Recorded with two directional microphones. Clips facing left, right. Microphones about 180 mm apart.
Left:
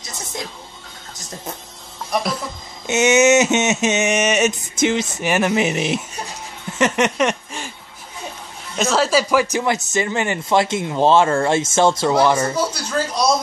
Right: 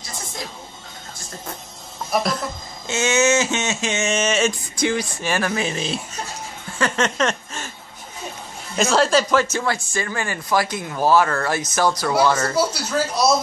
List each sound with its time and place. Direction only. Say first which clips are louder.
2.9 s speech: left 5 dB; 20° left (ahead or behind)
6.8 s a sound: left 3 dB; 15° left (ahead or behind)
8.7 s speech: even; centre (ahead or behind); by 12.1 s 25° left (ahead or behind)
12.1 s speech: left 2 dB; 15° left (ahead or behind)
12.5 s speech: right 1 dB; 5° right (ahead or behind)